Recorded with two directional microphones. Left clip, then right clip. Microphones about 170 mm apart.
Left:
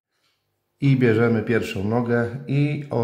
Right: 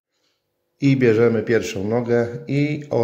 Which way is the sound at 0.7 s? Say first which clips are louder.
Right 3 dB; 15° right (ahead or behind).